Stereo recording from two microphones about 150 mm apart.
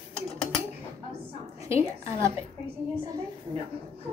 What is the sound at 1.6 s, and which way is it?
Speech, 20° right (ahead or behind).